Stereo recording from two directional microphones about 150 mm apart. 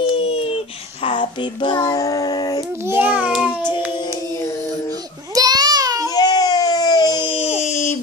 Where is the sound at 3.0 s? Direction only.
10° right (ahead or behind).